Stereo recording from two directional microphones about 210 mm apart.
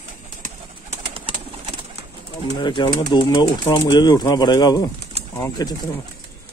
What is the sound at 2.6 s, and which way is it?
Speech, 20° left (ahead or behind).